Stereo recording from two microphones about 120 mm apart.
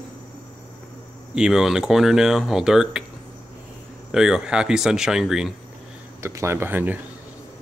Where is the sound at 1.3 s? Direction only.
5° right (ahead or behind).